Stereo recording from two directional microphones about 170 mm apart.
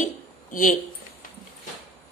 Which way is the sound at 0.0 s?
50° left (ahead or behind).